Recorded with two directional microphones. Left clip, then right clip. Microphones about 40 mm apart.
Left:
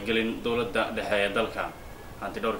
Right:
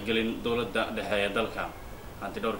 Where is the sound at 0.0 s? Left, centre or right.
Centre.